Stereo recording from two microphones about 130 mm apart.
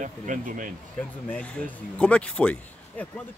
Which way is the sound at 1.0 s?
10° left (ahead or behind).